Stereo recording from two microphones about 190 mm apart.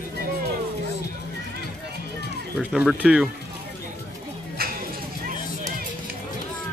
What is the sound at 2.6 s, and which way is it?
Speech, 5° right (ahead or behind).